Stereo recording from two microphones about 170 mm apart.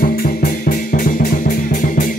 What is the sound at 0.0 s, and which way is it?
Music, 60° left (ahead or behind).